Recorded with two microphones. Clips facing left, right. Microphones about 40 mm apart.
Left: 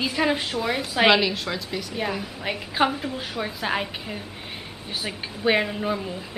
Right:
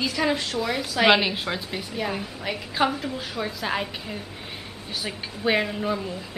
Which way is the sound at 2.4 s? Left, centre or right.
Centre.